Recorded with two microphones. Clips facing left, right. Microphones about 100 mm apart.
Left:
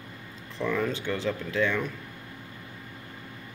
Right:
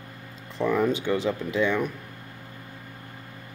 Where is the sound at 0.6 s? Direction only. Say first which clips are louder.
Right 5 dB; 15° right (ahead or behind).